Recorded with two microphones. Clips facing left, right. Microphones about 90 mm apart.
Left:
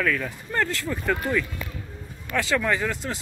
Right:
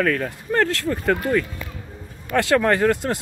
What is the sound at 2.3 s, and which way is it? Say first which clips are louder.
Speech: right 6 dB; 60° right (ahead or behind).